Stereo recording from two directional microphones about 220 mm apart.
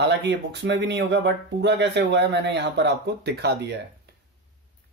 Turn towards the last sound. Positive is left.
turn(degrees=-50)  # may be behind; listen again after turning